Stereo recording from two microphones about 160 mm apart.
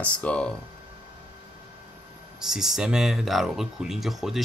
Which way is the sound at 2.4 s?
5° right (ahead or behind).